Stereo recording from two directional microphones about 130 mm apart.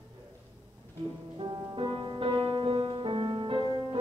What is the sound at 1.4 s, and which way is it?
Music, 35° right (ahead or behind).